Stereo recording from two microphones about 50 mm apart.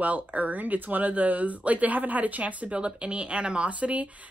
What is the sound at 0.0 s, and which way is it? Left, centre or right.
A woman's voice, right.